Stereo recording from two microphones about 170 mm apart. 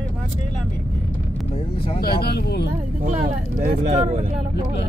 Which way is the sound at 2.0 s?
70° left (ahead or behind).